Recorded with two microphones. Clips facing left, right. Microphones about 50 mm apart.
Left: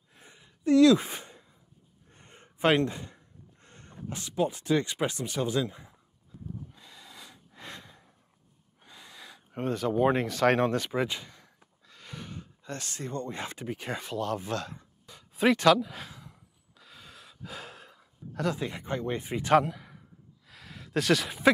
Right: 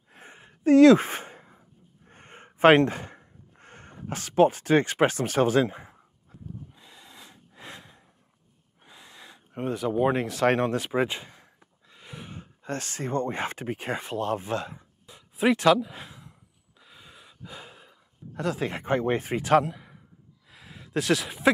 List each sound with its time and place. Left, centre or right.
0.1 s sigh: right
2.0 s a sound: right
4.1 s speech: right
5.7 s speech: right
6.7 s snort: centre
8.8 s a sound: centre
9.5 s speech: centre
10.2 s speech: right
11.9 s a sound: centre
12.6 s speech: right; by 16.3 s centre
16.7 s gasp: centre
18.8 s speech: right
19.7 s a sound: right
21.2 s speech: centre